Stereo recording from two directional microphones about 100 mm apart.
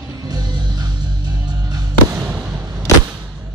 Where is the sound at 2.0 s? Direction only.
20° right (ahead or behind).